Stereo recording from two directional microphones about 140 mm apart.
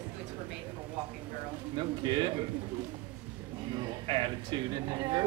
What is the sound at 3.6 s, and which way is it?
Speech, 30° right (ahead or behind).